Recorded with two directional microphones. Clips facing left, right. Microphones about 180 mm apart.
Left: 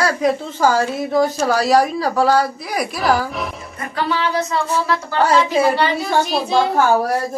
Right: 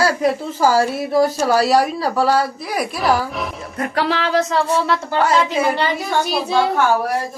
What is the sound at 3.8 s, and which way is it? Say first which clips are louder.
Music: right 1 dB; 80° right.